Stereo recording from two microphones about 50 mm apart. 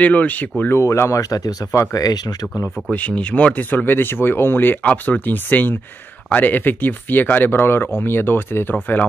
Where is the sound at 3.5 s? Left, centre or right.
Left.